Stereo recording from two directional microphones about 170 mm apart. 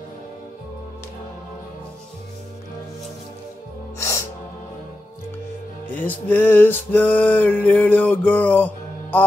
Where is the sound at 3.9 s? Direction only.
15° left (ahead or behind).